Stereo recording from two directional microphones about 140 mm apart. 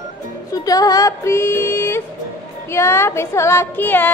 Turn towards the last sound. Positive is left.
turn(degrees=15)  # may be behind; listen again after turning